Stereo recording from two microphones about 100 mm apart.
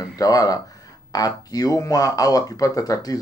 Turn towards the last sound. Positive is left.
turn(degrees=35)  # may be behind; listen again after turning